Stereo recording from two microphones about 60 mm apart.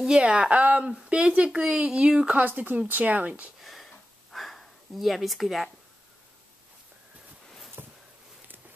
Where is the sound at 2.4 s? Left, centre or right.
Right.